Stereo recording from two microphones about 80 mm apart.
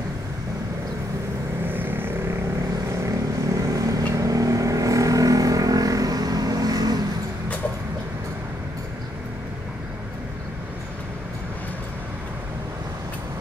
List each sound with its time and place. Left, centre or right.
1.7 s vehicle: right
3.5 s vehicle: right